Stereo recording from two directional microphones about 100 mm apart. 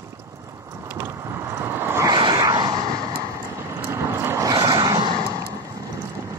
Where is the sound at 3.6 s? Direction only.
30° right (ahead or behind).